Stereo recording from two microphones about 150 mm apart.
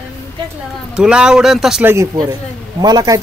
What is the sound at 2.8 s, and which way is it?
Speech, 25° right (ahead or behind).